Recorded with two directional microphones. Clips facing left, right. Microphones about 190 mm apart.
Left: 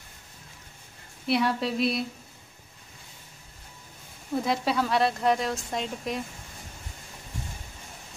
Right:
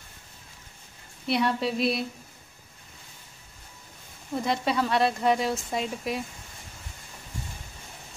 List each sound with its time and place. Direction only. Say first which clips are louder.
1.2 s speech: even; centre (ahead or behind)
4.4 s speech: even; centre (ahead or behind)